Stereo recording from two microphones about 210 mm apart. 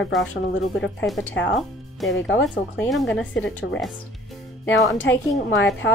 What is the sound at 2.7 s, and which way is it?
Speech, 5° left (ahead or behind).